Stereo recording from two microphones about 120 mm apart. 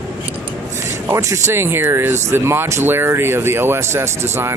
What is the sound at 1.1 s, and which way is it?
Speech, 25° right (ahead or behind).